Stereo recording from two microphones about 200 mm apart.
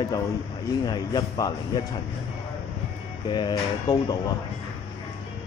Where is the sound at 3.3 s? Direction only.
20° left (ahead or behind).